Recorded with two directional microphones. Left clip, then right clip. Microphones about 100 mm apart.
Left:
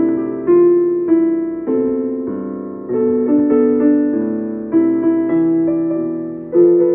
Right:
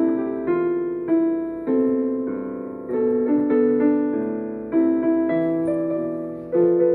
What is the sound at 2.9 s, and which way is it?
Piano, 35° left (ahead or behind).